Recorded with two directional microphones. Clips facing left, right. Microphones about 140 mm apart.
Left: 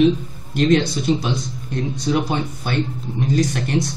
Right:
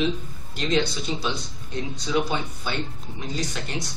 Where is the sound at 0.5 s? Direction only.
50° left (ahead or behind).